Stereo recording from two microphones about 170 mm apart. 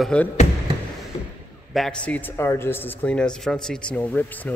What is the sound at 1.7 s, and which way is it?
A man's voice, 5° left (ahead or behind).